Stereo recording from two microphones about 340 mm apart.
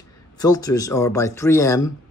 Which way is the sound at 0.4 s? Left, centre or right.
Centre.